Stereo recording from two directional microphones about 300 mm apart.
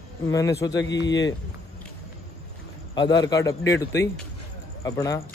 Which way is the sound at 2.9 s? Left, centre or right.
Centre.